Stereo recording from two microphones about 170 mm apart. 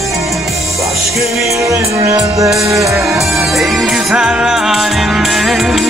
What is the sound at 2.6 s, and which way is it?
Music, 20° right (ahead or behind).